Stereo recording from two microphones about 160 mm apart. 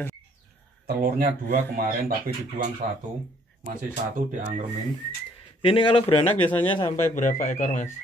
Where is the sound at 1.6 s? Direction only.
70° right (ahead or behind).